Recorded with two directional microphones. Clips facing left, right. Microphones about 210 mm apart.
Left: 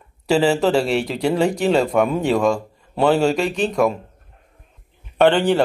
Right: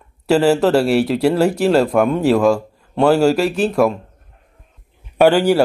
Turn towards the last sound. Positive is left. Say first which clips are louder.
# right 3 dB
turn(degrees=-10)  # may be behind; listen again after turning